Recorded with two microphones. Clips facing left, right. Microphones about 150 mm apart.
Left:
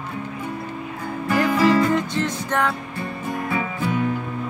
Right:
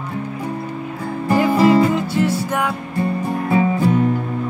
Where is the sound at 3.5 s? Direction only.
40° right (ahead or behind).